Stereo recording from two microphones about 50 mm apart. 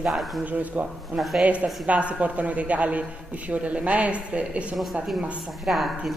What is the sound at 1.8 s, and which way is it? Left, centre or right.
A woman's voice, right.